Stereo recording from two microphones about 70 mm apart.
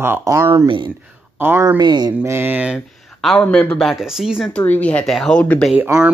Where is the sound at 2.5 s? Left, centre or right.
Centre.